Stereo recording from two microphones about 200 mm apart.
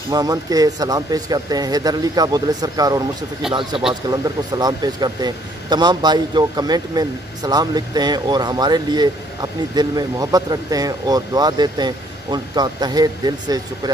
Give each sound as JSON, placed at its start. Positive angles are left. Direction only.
{"t": 0.1, "sound": "speech", "side_deg": -20}
{"t": 4.1, "sound": "speech", "side_deg": -20}